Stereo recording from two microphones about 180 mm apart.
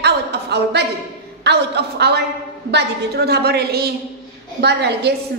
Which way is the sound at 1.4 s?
70° right (ahead or behind).